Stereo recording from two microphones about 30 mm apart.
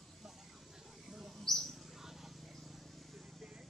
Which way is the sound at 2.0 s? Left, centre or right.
Centre.